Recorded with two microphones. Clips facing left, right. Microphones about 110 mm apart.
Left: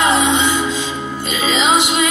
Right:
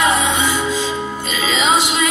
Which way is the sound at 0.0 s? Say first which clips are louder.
Left 2 dB; 20° left (ahead or behind).